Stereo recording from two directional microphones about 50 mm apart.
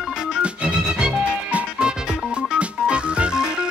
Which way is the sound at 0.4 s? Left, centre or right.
Right.